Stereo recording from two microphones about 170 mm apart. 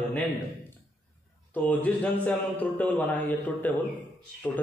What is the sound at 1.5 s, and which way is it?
A man's voice, 10° left (ahead or behind).